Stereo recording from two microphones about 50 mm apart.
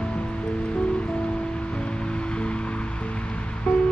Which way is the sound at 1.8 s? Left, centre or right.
Centre.